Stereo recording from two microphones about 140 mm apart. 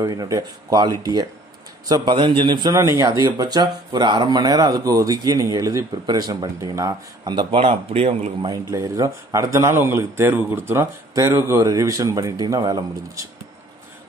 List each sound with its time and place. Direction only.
0.0 s a man's voice: 25° right (ahead or behind)
2.8 s speech: 20° right (ahead or behind); by 8.5 s 40° right (ahead or behind)
8.6 s speech: 20° right (ahead or behind)